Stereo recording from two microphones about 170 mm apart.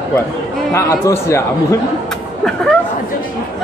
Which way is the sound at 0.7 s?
15° left (ahead or behind).